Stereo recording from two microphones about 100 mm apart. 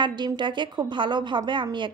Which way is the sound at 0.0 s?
50° right (ahead or behind).